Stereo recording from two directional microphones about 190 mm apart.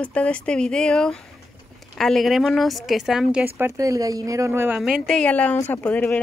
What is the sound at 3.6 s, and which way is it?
Speech, 15° right (ahead or behind).